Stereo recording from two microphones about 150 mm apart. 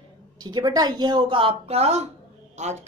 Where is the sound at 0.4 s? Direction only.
25° right (ahead or behind).